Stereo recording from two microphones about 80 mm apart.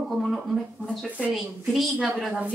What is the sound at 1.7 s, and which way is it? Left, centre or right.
Speech, centre.